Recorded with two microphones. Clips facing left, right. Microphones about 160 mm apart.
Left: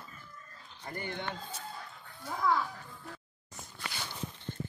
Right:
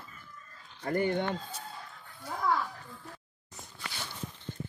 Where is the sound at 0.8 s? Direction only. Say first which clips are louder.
Right 11 dB; 50° right (ahead or behind).